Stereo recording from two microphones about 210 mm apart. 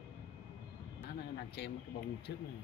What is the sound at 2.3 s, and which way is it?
Speech, 55° left (ahead or behind).